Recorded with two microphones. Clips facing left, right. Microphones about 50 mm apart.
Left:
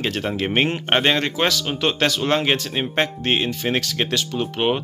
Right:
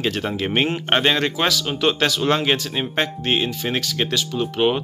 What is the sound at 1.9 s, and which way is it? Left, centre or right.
Speech, left.